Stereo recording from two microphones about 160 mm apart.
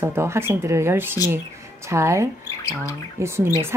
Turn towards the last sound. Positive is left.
turn(degrees=-15)  # may be behind; listen again after turning